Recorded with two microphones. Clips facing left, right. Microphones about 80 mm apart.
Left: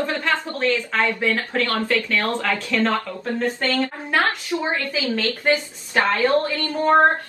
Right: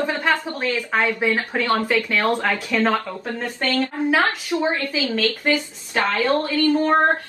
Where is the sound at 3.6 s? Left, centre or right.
Left.